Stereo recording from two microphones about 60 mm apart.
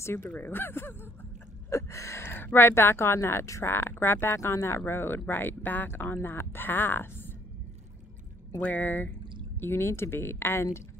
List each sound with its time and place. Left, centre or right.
0.4 s speech: left
1.7 s gasp: left
2.2 s speech: left
8.6 s speech: left
9.6 s speech: left